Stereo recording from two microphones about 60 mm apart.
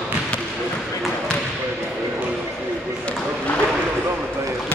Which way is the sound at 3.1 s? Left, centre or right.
Left.